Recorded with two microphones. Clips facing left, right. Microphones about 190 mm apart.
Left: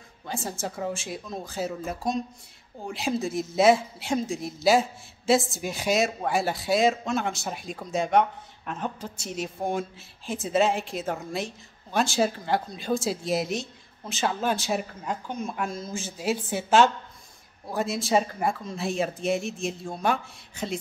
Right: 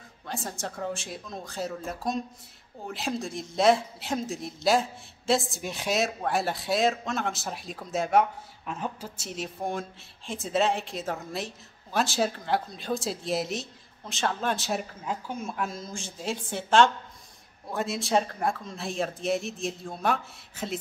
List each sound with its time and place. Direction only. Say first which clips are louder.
0.3 s speech: left 3 dB; centre (ahead or behind)